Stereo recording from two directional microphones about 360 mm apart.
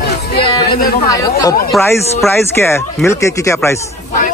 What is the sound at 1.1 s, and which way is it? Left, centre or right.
Speech, centre.